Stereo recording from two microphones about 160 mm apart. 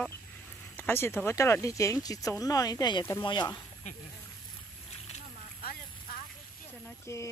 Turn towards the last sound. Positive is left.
turn(degrees=20)  # may be behind; listen again after turning